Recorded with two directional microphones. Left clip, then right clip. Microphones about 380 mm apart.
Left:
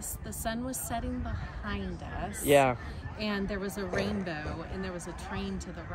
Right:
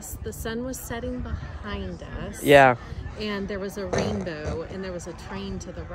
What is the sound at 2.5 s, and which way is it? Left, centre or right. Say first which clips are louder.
Speech: right 9 dB; right.